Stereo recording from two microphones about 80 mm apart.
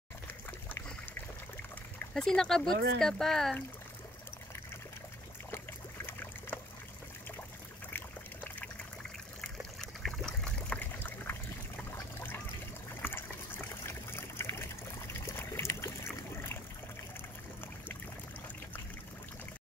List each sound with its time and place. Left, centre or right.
2.1 s speech: centre
6.0 s boat: left
9.8 s a sound: centre
10.8 s water: left
13.0 s water: left
15.1 s trickle: left